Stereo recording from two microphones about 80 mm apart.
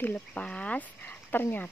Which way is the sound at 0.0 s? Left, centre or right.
Centre.